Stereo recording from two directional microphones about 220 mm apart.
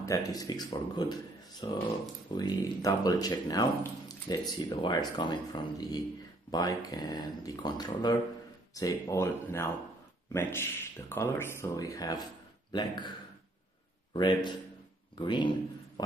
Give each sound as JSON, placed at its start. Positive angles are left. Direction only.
{"t": 0.0, "sound": "a man's voice", "side_deg": 15}
{"t": 14.1, "sound": "a man's voice", "side_deg": 20}